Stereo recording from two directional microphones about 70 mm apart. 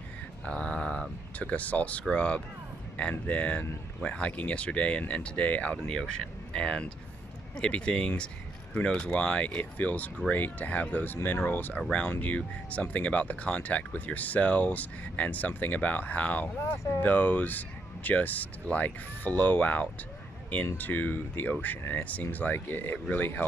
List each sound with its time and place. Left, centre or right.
0.5 s a sound: centre
1.4 s speech: left
16.5 s speech: left
17.0 s speech: left